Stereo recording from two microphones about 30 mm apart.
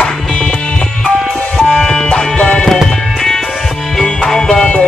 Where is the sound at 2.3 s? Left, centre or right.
Left.